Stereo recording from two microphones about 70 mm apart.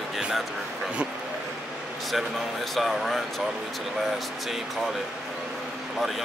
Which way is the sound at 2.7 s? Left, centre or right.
Centre.